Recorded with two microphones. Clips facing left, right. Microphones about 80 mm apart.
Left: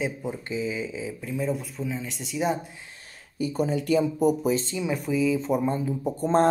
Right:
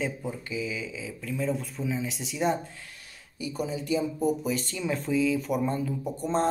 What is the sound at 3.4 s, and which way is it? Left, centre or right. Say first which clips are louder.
Speech: left 6 dB; left.